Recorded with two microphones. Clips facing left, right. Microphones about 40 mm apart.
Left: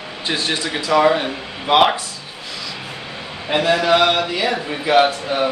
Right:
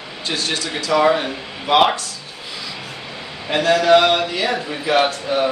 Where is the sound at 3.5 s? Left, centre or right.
Centre.